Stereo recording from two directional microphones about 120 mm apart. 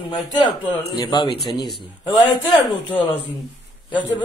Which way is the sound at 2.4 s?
45° left (ahead or behind).